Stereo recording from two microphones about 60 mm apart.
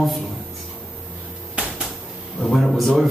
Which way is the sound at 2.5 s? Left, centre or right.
Centre.